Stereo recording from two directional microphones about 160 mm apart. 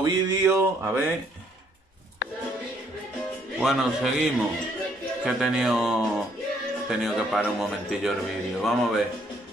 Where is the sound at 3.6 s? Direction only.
5° right (ahead or behind).